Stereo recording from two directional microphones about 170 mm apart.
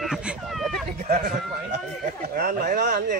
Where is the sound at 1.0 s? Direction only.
50° right (ahead or behind).